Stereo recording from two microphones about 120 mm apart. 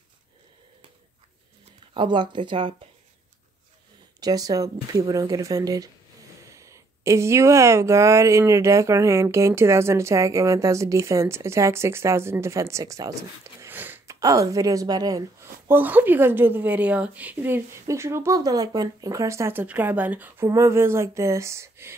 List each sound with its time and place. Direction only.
2.0 s speech: 40° right (ahead or behind)
4.2 s speech: 30° right (ahead or behind); by 14.1 s 15° right (ahead or behind)
14.2 s speech: 30° right (ahead or behind)
15.7 s a woman's voice: 15° right (ahead or behind)
20.4 s speech: 25° right (ahead or behind)